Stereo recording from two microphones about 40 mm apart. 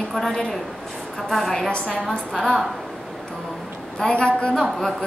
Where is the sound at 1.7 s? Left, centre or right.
Centre.